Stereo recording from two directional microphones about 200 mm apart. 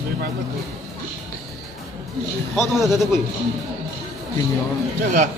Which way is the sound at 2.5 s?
Centre (ahead or behind).